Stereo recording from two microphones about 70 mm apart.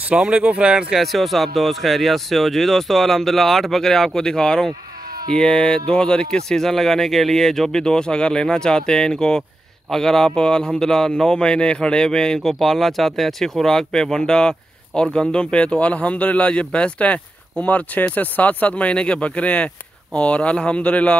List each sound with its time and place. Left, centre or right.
0.1 s speech: centre
0.9 s speech: centre